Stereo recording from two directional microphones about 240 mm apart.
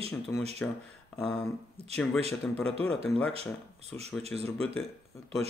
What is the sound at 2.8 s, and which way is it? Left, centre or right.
Speech, centre.